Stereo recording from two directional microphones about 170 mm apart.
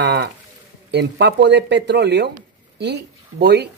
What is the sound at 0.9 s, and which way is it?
Speech, 80° right.